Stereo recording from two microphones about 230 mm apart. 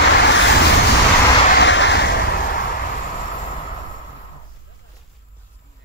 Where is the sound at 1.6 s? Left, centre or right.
Left.